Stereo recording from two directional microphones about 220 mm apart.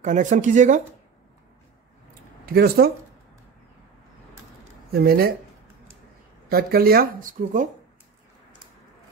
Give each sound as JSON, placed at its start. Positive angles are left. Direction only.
{"t": 0.0, "sound": "speech", "side_deg": -35}
{"t": 2.4, "sound": "speech", "side_deg": -45}
{"t": 4.9, "sound": "speech", "side_deg": -45}
{"t": 6.5, "sound": "speech", "side_deg": -45}